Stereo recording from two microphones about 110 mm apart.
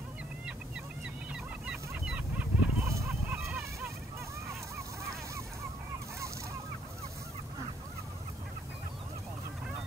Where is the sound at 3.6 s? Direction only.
25° right (ahead or behind).